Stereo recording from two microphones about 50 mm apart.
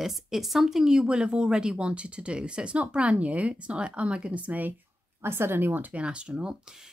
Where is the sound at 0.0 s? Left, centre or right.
Centre; by 4.7 s right.